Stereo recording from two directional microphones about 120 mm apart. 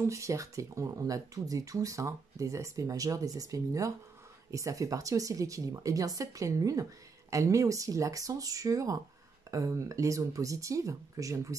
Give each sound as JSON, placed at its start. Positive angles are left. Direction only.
{"t": 0.0, "sound": "speech", "side_deg": -25}